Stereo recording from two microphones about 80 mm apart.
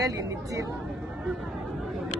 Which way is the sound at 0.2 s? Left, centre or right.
Right.